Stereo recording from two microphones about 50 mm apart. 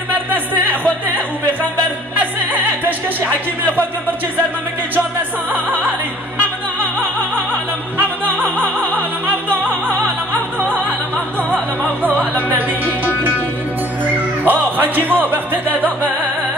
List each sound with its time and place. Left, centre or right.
0.1 s music: right
2.1 s music: right
3.3 s speech: left
8.7 s music: right
9.6 s opera: right
12.2 s music: right
14.4 s speech: right